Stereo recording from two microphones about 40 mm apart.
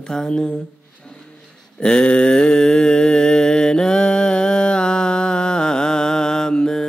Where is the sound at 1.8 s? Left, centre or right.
Left.